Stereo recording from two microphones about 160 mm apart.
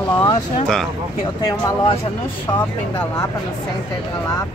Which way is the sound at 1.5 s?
20° left (ahead or behind).